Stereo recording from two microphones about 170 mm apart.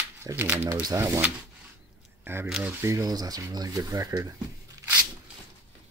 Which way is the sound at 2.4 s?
Centre (ahead or behind).